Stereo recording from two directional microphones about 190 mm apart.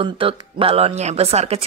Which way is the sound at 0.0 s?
30° right (ahead or behind).